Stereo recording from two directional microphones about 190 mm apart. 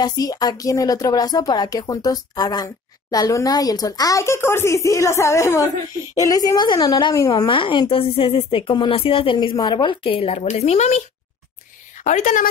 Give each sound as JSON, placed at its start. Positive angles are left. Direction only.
{"t": 0.0, "sound": "a woman's voice", "side_deg": 20}